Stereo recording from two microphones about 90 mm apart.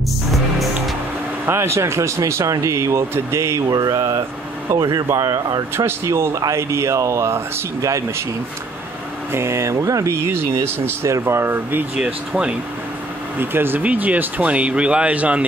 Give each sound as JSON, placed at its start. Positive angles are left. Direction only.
{"t": 1.4, "sound": "speech", "side_deg": -30}
{"t": 3.6, "sound": "mantra", "side_deg": -45}
{"t": 5.0, "sound": "speech", "side_deg": -40}
{"t": 5.9, "sound": "speech", "side_deg": -30}
{"t": 9.3, "sound": "speech", "side_deg": -30}
{"t": 12.0, "sound": "speech", "side_deg": -10}
{"t": 13.4, "sound": "speech", "side_deg": -25}